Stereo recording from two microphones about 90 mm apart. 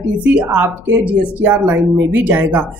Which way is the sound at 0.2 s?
15° right (ahead or behind).